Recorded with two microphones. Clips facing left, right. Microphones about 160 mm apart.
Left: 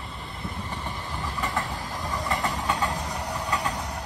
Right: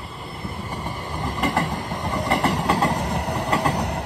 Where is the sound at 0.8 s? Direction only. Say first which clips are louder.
Right 5 dB; 40° right (ahead or behind).